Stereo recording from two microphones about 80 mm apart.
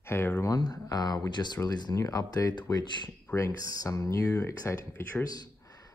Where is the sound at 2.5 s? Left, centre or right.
Left.